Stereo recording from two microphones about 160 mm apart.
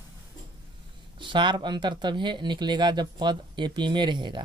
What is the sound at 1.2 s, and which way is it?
Speech, 30° right (ahead or behind).